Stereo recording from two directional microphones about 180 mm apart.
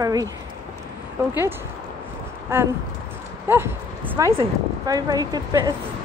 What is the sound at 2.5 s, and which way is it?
A woman's voice, 15° right (ahead or behind).